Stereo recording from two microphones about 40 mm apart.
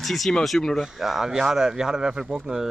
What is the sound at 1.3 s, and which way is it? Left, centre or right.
Speech, centre.